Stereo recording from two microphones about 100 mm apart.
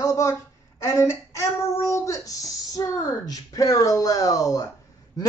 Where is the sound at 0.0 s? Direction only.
35° left (ahead or behind).